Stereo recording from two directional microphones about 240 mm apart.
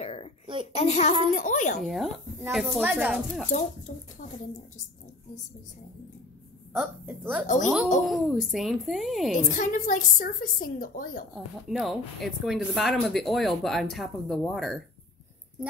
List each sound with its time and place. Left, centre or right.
0.0 s a sound: left
0.7 s a child's voice: left
1.8 s speech: centre
4.2 s a sound: left
6.7 s speech: centre
7.4 s a woman's voice: left
8.1 s speech: centre
9.5 s a woman's voice: left
11.3 s a woman's voice: centre